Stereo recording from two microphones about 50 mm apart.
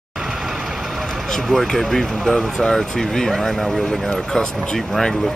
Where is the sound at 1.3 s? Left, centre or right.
Centre.